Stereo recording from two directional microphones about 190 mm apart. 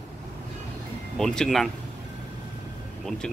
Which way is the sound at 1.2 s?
5° left (ahead or behind).